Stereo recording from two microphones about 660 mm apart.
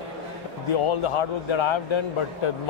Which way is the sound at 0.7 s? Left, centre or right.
Left.